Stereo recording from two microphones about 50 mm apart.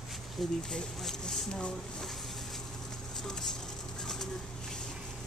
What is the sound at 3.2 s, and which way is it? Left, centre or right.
Vehicle, centre.